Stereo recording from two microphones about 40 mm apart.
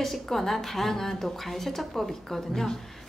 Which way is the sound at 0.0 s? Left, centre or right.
Centre.